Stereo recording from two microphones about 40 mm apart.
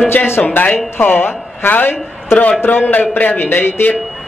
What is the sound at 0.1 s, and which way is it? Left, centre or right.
A man's voice, left.